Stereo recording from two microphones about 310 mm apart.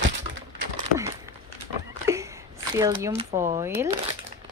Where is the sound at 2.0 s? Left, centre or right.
Centre.